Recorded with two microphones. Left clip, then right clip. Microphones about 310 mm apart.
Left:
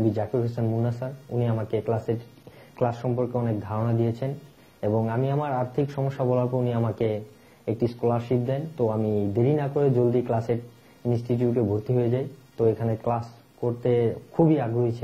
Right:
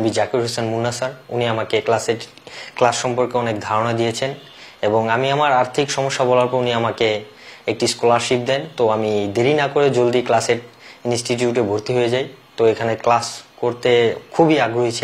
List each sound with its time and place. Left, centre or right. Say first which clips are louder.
0.1 s speech: right 9 dB; centre
8.8 s speech: right 8 dB; right
9.3 s speech: right 10 dB; centre